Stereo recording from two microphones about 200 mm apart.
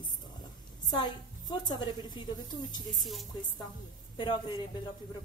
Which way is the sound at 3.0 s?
Centre (ahead or behind).